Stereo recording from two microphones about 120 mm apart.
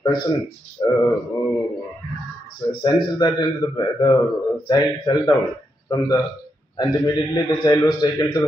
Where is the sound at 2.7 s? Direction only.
40° left (ahead or behind).